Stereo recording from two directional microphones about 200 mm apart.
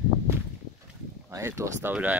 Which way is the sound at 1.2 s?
15° right (ahead or behind).